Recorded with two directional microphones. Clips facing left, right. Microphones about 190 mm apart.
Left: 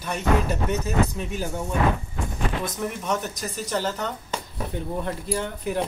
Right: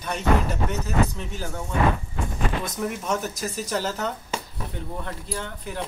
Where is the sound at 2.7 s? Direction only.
Centre (ahead or behind).